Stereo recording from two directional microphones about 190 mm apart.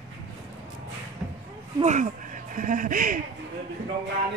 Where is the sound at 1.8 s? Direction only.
40° right (ahead or behind).